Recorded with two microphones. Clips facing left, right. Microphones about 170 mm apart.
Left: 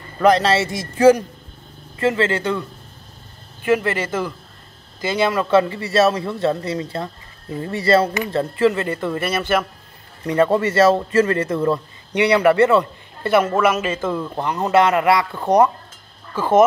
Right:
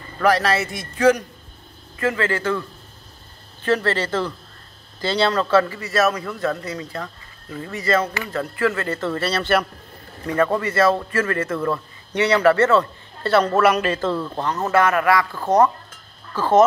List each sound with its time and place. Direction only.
0.2 s a man's voice: 20° left (ahead or behind)
3.6 s a man's voice: 10° left (ahead or behind)
10.2 s a man's voice: 20° left (ahead or behind)